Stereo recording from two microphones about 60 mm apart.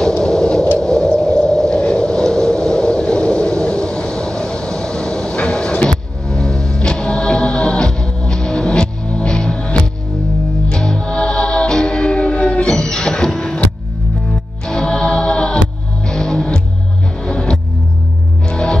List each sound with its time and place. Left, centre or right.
0.2 s radio: centre
0.7 s a sound: centre
10.7 s music: centre
14.7 s music: centre